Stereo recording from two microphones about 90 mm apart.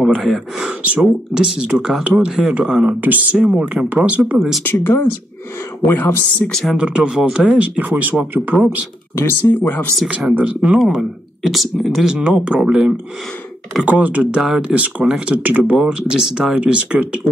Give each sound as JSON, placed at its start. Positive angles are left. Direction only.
{"t": 0.1, "sound": "speech", "side_deg": 0}
{"t": 4.4, "sound": "speech", "side_deg": 0}
{"t": 4.6, "sound": "speech", "side_deg": 25}
{"t": 6.5, "sound": "speech", "side_deg": 0}
{"t": 6.8, "sound": "speech", "side_deg": -10}
{"t": 9.1, "sound": "speech", "side_deg": 30}
{"t": 10.0, "sound": "speech", "side_deg": -15}